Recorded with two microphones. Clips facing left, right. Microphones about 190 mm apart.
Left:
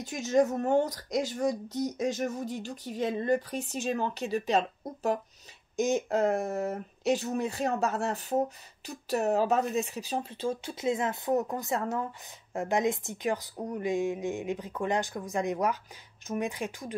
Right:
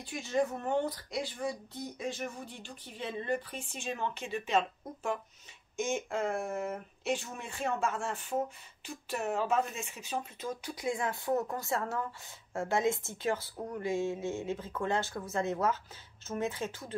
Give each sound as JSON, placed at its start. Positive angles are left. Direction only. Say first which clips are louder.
{"t": 0.0, "sound": "speech", "louder": "left 6 dB", "side_deg": 45}